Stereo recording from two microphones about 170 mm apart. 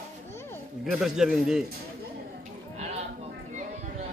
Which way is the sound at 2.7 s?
40° right (ahead or behind).